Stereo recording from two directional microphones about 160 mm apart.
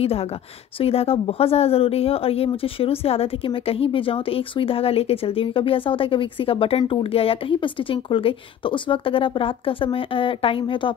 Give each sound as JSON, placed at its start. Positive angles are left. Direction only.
{"t": 0.0, "sound": "speech", "side_deg": 40}